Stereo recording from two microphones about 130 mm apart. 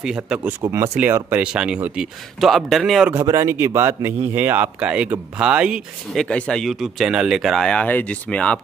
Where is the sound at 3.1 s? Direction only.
20° right (ahead or behind).